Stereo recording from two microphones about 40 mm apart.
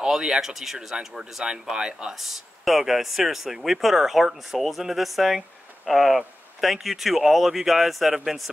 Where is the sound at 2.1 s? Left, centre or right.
Centre.